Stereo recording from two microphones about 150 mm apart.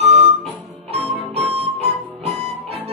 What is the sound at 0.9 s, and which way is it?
Music, 45° right (ahead or behind).